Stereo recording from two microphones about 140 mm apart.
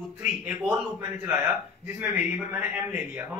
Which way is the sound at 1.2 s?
15° right (ahead or behind).